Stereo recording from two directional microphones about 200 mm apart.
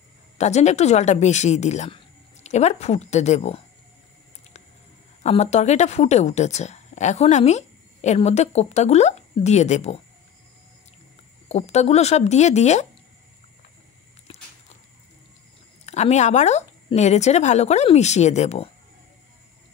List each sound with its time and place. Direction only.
0.4 s speech: 35° left (ahead or behind)
5.2 s speech: 35° left (ahead or behind)
11.4 s speech: 30° left (ahead or behind)
15.8 s speech: 35° left (ahead or behind)